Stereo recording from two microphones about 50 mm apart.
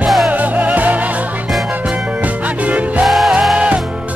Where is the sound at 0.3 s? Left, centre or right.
Right.